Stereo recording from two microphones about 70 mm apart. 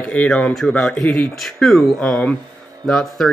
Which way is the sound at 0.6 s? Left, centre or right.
Centre.